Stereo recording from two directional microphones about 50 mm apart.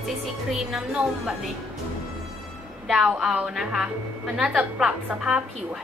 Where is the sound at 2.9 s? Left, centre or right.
Centre.